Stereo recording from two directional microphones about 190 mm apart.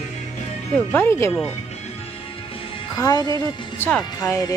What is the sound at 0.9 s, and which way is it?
Music, 10° left (ahead or behind).